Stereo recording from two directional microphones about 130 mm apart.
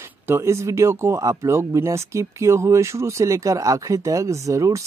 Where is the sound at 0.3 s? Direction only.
20° right (ahead or behind).